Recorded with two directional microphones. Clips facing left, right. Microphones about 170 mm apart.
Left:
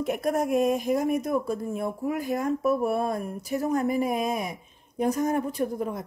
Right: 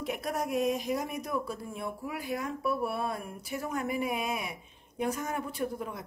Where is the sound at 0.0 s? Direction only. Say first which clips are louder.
Left 7 dB; 45° left (ahead or behind).